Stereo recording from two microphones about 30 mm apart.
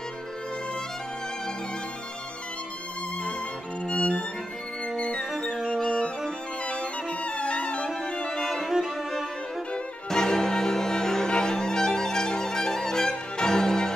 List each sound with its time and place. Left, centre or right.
3.8 s violin: left
5.4 s music: left
8.3 s violin: centre
8.6 s music: centre
10.0 s music: centre
11.2 s music: left
11.5 s music: centre